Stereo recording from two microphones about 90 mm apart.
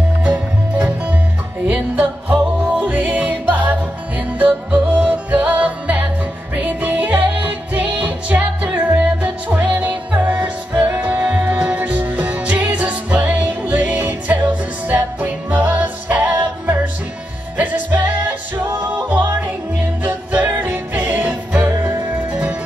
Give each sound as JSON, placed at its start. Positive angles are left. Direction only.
{"t": 0.2, "sound": "music", "side_deg": -15}